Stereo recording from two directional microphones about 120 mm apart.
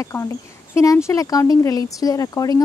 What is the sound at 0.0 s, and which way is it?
Speech, 25° left (ahead or behind).